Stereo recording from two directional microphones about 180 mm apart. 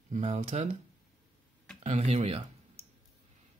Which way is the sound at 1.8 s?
35° right (ahead or behind).